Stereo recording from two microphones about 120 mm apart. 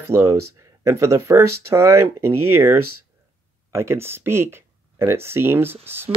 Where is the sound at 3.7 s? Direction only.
20° right (ahead or behind).